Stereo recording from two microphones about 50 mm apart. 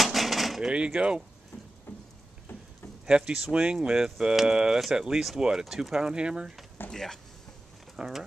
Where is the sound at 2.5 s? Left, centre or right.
Left.